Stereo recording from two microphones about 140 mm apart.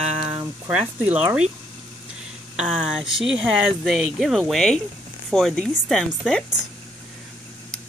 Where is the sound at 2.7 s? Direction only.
5° right (ahead or behind).